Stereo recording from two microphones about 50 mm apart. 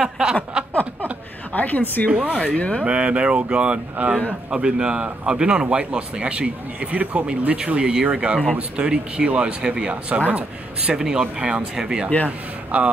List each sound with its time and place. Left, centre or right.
0.0 s a sound: centre
1.5 s a woman's voice: left
2.0 s speech: right
2.4 s speech: left
2.8 s speech: right
12.3 s a man's voice: right